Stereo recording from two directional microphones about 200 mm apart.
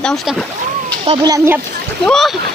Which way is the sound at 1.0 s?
20° right (ahead or behind).